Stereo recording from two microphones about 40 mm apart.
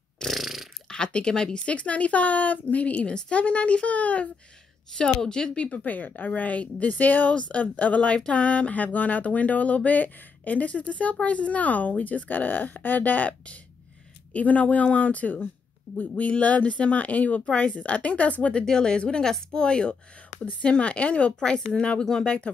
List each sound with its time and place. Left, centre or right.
0.3 s a sound: centre
0.8 s speech: left
5.2 s speech: centre
5.6 s speech: left
14.3 s speech: left
18.7 s speech: centre
21.4 s speech: left
22.0 s speech: centre